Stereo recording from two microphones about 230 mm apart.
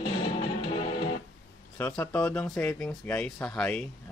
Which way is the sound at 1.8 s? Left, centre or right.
Centre.